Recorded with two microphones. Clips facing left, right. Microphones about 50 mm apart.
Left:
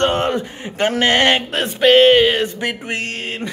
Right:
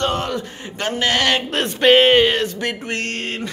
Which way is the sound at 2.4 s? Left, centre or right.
Centre.